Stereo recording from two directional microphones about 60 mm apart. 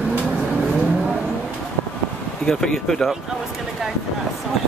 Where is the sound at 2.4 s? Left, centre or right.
Centre.